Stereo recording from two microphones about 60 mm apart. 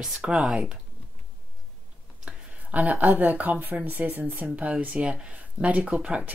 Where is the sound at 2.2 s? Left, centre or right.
Right.